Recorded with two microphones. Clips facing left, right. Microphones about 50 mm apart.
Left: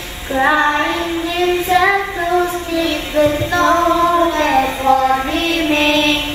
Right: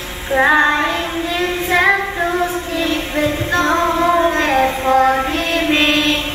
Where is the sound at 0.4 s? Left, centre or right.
Right.